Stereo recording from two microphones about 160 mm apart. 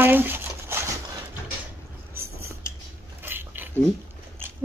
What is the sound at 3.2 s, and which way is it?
Dog, 15° right (ahead or behind).